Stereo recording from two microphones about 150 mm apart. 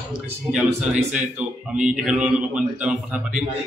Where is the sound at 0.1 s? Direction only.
5° right (ahead or behind).